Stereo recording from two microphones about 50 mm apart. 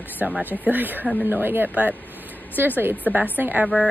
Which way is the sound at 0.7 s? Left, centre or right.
Right.